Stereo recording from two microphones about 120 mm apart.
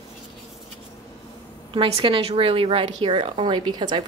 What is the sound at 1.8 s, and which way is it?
A woman's voice, 50° right (ahead or behind).